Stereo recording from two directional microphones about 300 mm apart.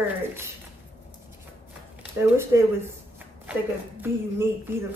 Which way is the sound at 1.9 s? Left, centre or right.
Centre.